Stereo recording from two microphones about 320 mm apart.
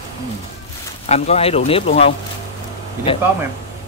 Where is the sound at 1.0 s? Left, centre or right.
Centre.